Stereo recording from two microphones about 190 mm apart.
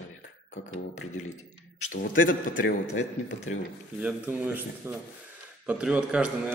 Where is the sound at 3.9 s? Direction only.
10° right (ahead or behind).